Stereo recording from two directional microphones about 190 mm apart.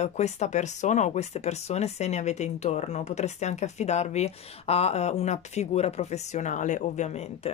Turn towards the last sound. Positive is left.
turn(degrees=35)  # may be behind; listen again after turning